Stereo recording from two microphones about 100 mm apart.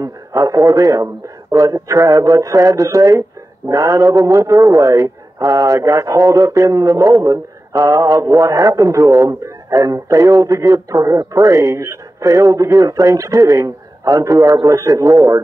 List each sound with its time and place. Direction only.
0.0 s a man's voice: 35° right (ahead or behind)